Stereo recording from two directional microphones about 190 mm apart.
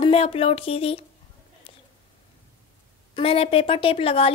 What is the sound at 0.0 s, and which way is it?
Speech, 30° left (ahead or behind).